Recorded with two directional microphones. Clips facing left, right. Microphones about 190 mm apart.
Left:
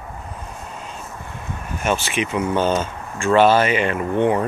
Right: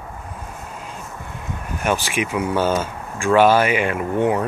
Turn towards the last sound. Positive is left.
turn(degrees=-5)  # may be behind; listen again after turning